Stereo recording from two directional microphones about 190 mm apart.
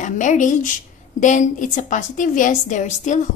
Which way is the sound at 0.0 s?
40° left (ahead or behind).